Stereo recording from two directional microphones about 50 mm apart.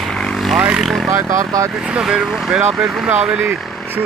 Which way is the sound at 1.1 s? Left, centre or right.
Right.